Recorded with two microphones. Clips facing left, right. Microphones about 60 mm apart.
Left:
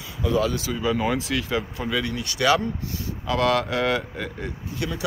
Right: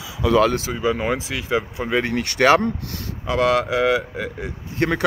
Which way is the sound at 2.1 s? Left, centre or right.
Right.